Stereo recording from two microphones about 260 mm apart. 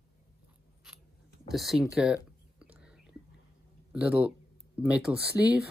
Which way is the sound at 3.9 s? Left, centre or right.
Centre.